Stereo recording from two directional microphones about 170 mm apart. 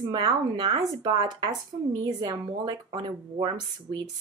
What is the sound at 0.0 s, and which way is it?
Speech, 20° right (ahead or behind).